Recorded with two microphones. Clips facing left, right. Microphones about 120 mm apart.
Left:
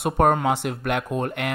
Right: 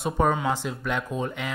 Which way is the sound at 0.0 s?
60° left (ahead or behind).